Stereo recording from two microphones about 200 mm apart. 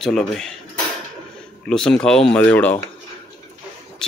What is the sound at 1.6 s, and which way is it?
Speech, 5° left (ahead or behind).